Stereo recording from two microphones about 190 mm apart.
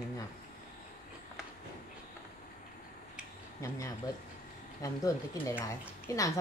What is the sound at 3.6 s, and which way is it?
Speech, 15° left (ahead or behind).